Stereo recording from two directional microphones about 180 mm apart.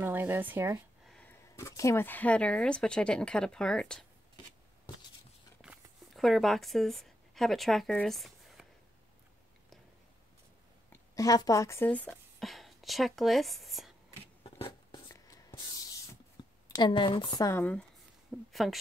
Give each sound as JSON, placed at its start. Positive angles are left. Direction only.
{"t": 0.0, "sound": "speech", "side_deg": -10}
{"t": 1.0, "sound": "speech", "side_deg": 5}
{"t": 5.6, "sound": "a sound", "side_deg": 0}
{"t": 10.9, "sound": "speech", "side_deg": 20}
{"t": 14.6, "sound": "writing", "side_deg": 25}
{"t": 16.7, "sound": "speech", "side_deg": 25}
{"t": 18.5, "sound": "a woman's voice", "side_deg": 0}